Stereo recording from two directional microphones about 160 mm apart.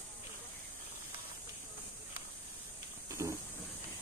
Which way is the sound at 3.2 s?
15° right (ahead or behind).